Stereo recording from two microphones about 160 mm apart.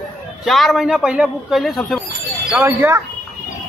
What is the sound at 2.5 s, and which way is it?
Speech, 15° right (ahead or behind).